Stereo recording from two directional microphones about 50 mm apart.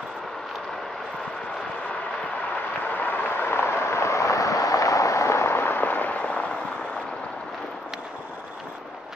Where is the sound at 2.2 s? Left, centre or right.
Left.